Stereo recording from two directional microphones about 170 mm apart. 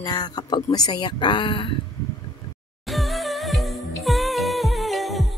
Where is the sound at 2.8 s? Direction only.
Centre (ahead or behind).